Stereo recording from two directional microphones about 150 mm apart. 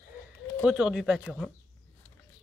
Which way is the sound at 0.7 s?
5° right (ahead or behind).